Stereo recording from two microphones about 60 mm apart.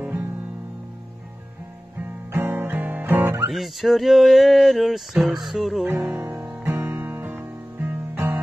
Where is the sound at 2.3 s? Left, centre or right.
Right.